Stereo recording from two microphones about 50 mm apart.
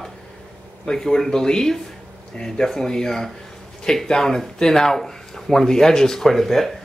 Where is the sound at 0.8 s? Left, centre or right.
Centre.